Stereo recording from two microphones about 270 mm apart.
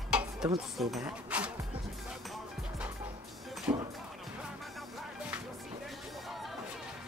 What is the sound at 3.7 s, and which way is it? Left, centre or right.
Music, centre.